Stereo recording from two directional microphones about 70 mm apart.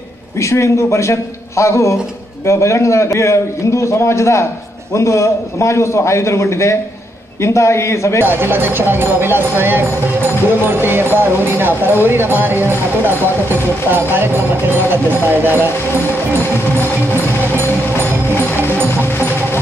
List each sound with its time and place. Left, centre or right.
0.4 s a man's voice: left
8.3 s speech: right
17.1 s music: right